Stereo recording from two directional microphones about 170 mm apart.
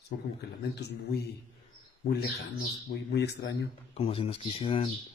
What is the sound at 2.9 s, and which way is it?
Speech, 75° left (ahead or behind).